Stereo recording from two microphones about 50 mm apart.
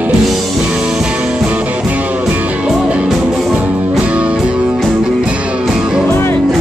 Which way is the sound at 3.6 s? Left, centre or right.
Right.